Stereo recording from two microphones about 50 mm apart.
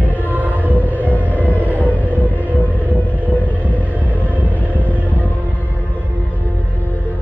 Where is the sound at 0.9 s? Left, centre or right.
Left.